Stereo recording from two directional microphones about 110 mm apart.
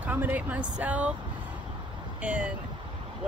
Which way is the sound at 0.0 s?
15° right (ahead or behind).